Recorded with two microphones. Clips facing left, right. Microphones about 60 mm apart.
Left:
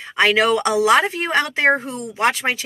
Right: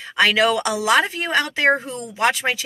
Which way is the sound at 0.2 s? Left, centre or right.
Left.